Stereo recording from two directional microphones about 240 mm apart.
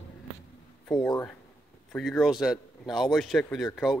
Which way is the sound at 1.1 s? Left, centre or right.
Centre.